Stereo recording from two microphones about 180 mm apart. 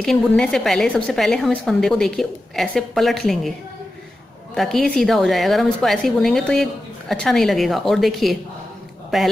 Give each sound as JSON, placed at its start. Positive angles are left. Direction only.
{"t": 0.0, "sound": "a woman's voice", "side_deg": 0}
{"t": 4.6, "sound": "a woman's voice", "side_deg": 0}